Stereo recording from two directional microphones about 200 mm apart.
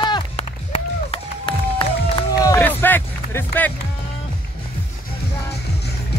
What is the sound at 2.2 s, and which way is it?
Music, 15° left (ahead or behind).